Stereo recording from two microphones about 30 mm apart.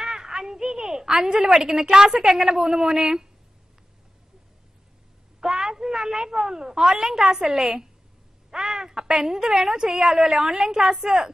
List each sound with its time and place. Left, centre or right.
0.0 s a sound: right
1.7 s a woman's voice: right
5.4 s a woman's voice: right